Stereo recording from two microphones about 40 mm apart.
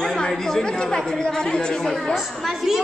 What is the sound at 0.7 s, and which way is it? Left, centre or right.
A man's voice, left.